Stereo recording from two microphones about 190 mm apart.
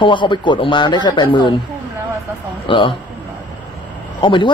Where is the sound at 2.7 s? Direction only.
25° left (ahead or behind).